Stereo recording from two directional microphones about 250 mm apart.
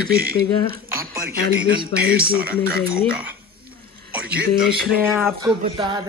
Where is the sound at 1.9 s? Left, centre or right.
Centre.